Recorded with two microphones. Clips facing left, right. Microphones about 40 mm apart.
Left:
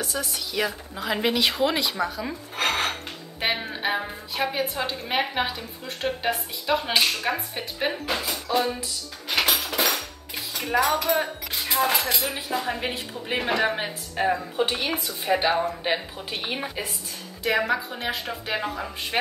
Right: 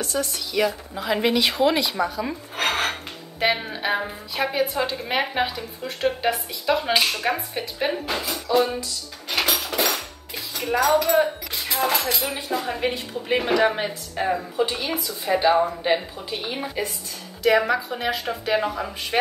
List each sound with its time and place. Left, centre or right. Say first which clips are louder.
0.0 s speech: right 3 dB; centre
9.3 s dishes: even; centre
11.0 s music: right 5 dB; centre
12.4 s speech: right 2 dB; centre
14.6 s speech: right 2 dB; left
15.2 s speech: right 4 dB; centre